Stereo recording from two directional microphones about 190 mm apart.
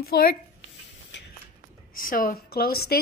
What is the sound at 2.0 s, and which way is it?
Speech, 45° left (ahead or behind).